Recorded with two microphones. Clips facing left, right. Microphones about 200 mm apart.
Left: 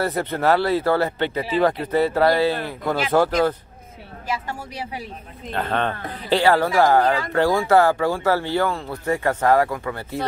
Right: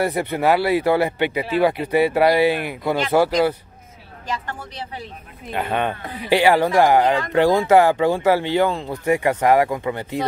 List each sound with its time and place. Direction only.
0.0 s speech: 10° right (ahead or behind)
4.3 s speech: 10° left (ahead or behind)
5.5 s speech: 15° right (ahead or behind)